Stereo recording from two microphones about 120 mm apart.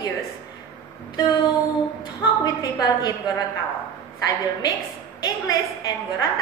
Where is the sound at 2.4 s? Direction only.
35° left (ahead or behind).